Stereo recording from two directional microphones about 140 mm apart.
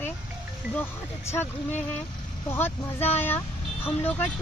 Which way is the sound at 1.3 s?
15° left (ahead or behind).